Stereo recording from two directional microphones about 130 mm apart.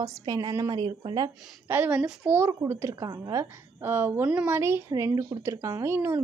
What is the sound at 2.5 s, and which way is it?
A woman's voice, 20° right (ahead or behind).